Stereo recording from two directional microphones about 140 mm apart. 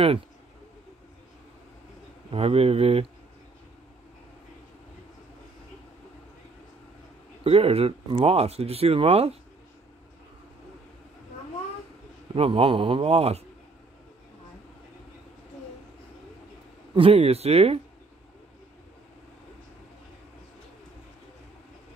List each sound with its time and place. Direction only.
2.3 s speech: 45° right (ahead or behind)
7.4 s speech: 45° right (ahead or behind)
12.4 s speech: 40° right (ahead or behind)
16.9 s speech: 40° right (ahead or behind)